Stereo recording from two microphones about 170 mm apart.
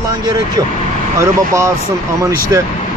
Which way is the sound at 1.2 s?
15° right (ahead or behind).